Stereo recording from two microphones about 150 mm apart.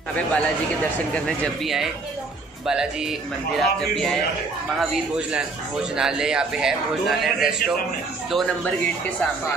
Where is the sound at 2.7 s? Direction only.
5° right (ahead or behind).